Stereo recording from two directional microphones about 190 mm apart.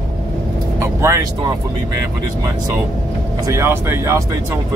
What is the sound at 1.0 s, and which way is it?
Speech, 15° right (ahead or behind).